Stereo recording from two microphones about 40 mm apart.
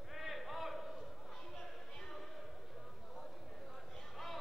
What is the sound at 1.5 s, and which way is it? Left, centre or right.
Music, left.